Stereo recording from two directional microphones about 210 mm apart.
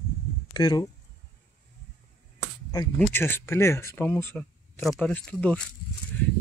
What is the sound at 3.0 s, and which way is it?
Speech, 10° left (ahead or behind).